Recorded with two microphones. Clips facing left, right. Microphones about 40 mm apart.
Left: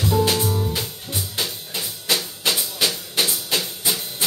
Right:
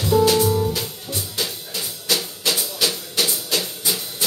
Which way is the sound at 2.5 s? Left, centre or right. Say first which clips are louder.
Even; centre.